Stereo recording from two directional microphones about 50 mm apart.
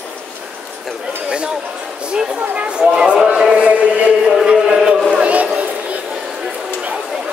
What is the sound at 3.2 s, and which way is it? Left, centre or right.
Music, centre.